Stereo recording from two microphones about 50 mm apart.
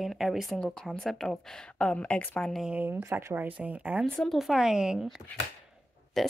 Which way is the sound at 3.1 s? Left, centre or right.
Right.